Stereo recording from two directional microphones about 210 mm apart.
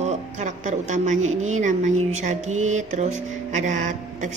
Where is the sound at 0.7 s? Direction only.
35° right (ahead or behind).